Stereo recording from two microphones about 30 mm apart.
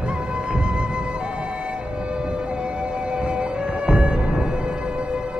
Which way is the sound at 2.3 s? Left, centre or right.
Right.